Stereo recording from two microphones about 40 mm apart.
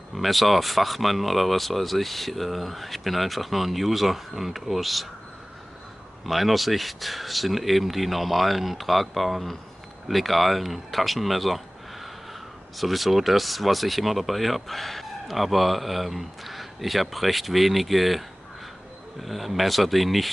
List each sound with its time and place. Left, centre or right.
0.1 s speech: centre
6.2 s speech: centre
19.2 s speech: centre